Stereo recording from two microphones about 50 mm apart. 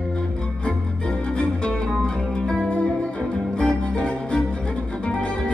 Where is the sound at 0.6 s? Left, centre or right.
Centre.